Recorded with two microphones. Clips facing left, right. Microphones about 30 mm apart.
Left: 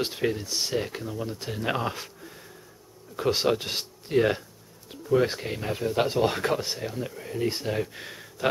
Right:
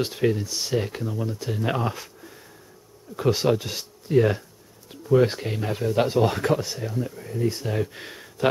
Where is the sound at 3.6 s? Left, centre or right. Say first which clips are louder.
Left 1 dB; left.